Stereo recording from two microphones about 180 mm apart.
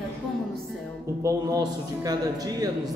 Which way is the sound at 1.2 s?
20° right (ahead or behind).